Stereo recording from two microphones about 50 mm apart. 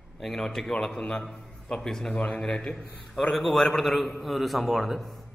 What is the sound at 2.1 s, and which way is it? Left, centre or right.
Speech, left.